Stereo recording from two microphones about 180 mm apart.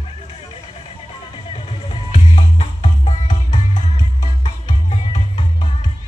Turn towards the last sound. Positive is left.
turn(degrees=25)  # may be behind; listen again after turning